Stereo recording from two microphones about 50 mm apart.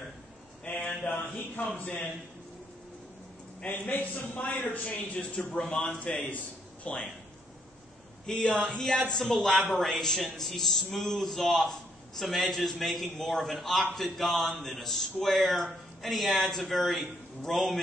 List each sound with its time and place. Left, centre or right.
0.7 s a sound: left
3.6 s a man's voice: left
8.3 s a man's voice: centre